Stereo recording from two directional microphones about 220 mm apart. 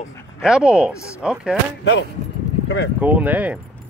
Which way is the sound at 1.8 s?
50° left (ahead or behind).